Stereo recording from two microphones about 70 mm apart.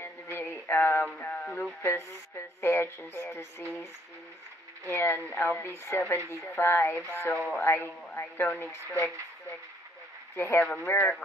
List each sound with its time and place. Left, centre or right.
0.0 s a sound: left
1.0 s a sound: centre
1.8 s speech: left
4.8 s speech: left
8.1 s speech: left
10.3 s speech: left
10.8 s speech: left